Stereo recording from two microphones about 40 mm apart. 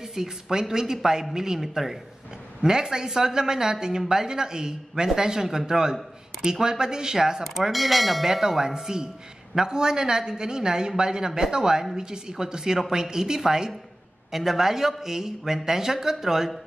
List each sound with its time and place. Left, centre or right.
0.0 s speech: centre
7.7 s speech: centre